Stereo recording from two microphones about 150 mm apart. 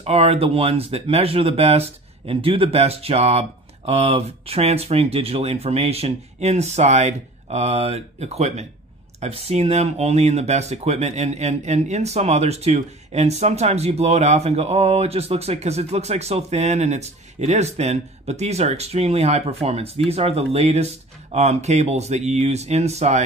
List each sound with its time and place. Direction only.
0.0 s speech: 40° right (ahead or behind)